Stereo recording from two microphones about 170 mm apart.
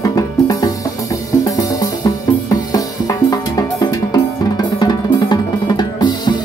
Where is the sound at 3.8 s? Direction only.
25° left (ahead or behind).